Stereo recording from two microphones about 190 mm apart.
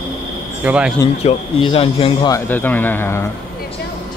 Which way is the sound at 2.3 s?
10° left (ahead or behind).